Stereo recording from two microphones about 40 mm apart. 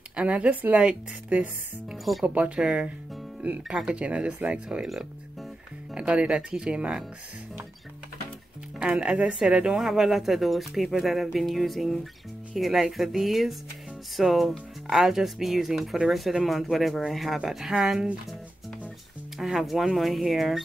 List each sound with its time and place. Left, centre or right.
0.1 s a woman's voice: right
4.0 s a woman's voice: right
5.9 s a woman's voice: right
8.7 s a woman's voice: right
9.8 s speech: centre
14.9 s speech: centre
19.3 s speech: centre